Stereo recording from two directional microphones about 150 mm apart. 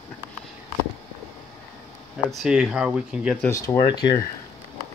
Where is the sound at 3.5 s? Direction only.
20° left (ahead or behind).